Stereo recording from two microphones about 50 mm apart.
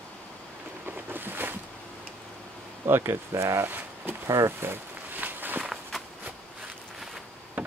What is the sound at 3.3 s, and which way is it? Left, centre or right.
Speech, right.